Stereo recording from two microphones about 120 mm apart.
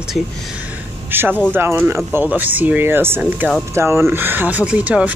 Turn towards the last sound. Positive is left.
turn(degrees=-10)  # may be behind; listen again after turning